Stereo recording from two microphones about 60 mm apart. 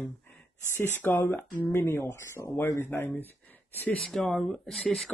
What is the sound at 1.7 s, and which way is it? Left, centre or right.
Speech, left.